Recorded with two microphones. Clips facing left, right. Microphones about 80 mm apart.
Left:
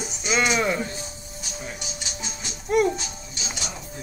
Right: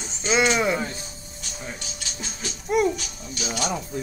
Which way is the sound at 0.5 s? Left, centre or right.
Centre.